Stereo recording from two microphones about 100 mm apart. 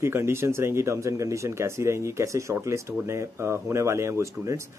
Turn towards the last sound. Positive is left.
turn(degrees=-30)  # may be behind; listen again after turning